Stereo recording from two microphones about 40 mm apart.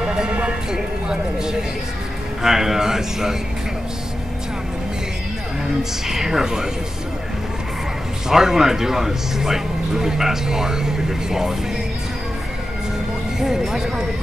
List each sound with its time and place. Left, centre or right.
0.0 s music: centre
0.7 s speech: centre
5.8 s speech: centre
8.3 s speech: centre
13.4 s speech: centre